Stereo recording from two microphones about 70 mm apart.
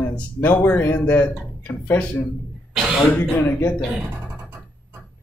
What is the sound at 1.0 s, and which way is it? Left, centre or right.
Speech, left.